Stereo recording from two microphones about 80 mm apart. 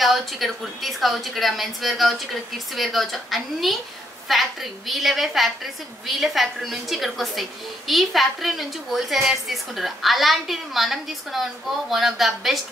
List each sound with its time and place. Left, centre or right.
0.0 s a woman's voice: centre